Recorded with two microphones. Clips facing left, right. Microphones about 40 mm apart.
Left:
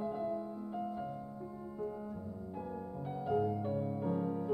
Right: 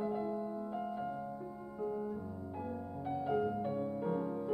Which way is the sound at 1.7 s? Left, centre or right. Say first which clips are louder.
Right 4 dB; centre.